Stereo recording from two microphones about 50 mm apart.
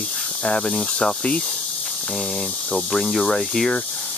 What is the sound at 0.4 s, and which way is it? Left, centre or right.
Speech, left.